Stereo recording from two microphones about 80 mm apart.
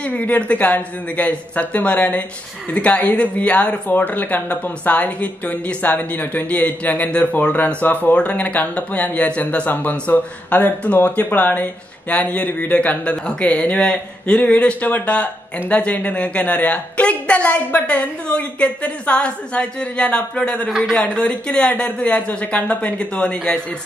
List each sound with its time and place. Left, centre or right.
0.0 s a woman's voice: centre